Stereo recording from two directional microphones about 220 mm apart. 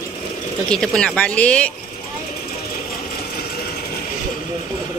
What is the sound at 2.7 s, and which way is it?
Sewing machine, 45° left (ahead or behind).